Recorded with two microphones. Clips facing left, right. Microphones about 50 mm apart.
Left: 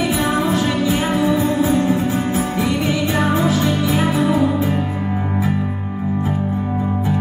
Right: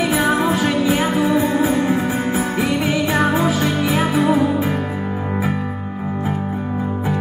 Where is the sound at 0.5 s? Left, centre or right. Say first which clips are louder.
Right 1 dB; centre.